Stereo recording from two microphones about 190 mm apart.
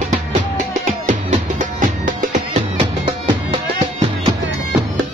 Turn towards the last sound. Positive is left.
turn(degrees=-25)  # may be behind; listen again after turning